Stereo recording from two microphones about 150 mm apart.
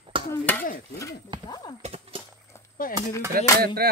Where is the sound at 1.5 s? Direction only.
30° left (ahead or behind).